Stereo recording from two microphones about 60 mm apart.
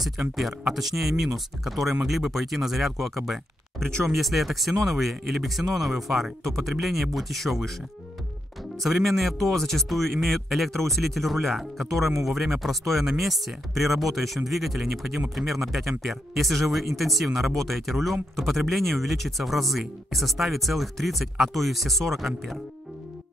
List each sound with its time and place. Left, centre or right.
0.0 s speech: centre
8.8 s speech: centre